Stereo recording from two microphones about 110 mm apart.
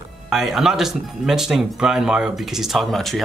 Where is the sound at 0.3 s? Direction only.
5° right (ahead or behind).